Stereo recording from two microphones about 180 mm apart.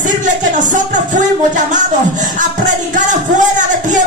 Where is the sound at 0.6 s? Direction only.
45° right (ahead or behind).